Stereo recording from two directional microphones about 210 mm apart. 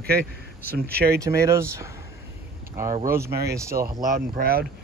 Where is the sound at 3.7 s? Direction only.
40° right (ahead or behind).